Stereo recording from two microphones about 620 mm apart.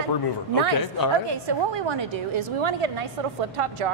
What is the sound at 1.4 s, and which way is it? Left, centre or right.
A woman's voice, right.